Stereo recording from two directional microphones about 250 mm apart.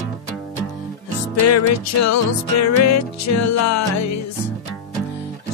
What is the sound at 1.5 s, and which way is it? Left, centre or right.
Music, left.